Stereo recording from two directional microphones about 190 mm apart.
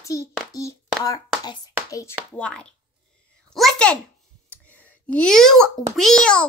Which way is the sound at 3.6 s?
5° left (ahead or behind).